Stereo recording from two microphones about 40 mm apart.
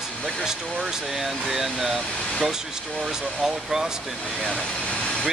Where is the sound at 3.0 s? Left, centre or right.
Centre.